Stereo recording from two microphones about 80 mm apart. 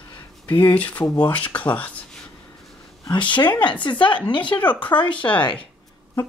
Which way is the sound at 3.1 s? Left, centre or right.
Left.